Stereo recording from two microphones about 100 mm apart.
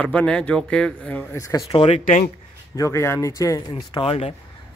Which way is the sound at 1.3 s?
30° left (ahead or behind).